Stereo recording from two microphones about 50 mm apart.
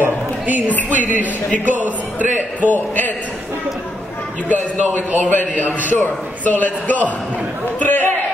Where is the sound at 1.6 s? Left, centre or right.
Right.